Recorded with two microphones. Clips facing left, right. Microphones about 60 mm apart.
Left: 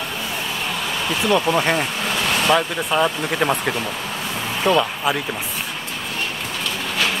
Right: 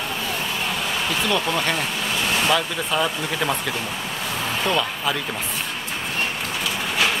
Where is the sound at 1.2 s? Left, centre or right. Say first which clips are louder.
Left 7 dB; centre.